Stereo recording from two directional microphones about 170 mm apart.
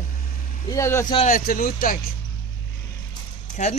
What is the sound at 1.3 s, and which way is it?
Speech, 55° left (ahead or behind).